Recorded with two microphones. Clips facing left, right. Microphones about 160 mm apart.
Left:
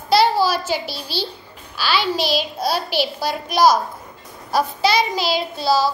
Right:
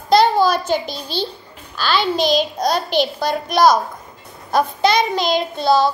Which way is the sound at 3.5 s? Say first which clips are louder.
Right 1 dB; 55° right (ahead or behind).